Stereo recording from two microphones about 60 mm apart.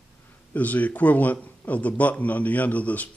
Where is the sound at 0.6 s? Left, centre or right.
Left.